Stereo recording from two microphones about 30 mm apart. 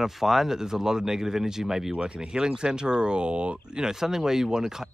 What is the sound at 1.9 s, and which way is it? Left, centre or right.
Speech, right.